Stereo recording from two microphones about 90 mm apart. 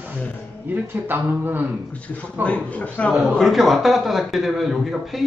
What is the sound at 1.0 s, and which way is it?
Dog, 20° right (ahead or behind).